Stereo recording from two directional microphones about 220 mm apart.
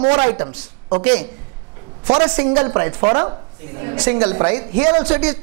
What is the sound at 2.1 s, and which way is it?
A woman's voice, 20° right (ahead or behind).